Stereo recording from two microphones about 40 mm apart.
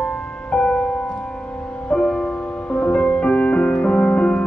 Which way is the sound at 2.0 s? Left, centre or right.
Left.